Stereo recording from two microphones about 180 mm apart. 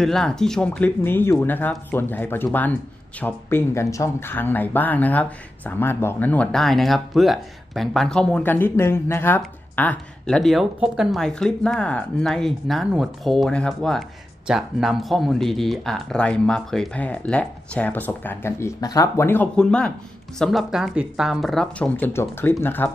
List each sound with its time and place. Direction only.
0.0 s speech: 5° left (ahead or behind)